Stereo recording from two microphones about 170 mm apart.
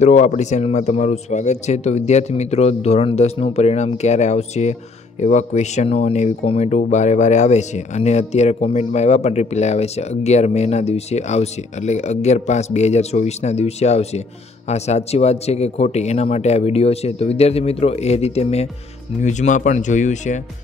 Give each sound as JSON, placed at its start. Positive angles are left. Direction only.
{"t": 0.0, "sound": "speech", "side_deg": 45}